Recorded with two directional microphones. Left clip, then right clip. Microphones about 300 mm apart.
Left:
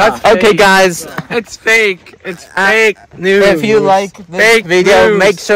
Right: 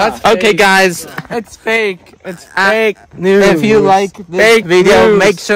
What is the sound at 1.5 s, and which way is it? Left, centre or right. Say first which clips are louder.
Speech: left 4 dB; right.